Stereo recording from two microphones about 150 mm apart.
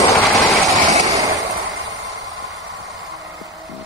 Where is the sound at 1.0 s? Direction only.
25° right (ahead or behind).